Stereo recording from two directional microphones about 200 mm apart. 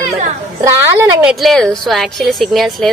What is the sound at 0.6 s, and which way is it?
Speech, 15° right (ahead or behind).